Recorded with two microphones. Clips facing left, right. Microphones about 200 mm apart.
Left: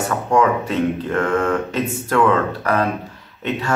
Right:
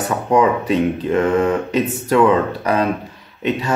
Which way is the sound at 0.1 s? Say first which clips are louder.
Right 2 dB; 20° right (ahead or behind).